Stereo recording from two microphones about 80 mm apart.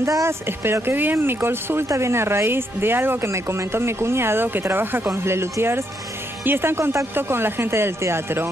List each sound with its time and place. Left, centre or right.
0.0 s speech: right